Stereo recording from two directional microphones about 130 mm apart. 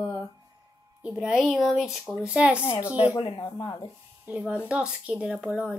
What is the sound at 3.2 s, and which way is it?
Speech, 25° left (ahead or behind).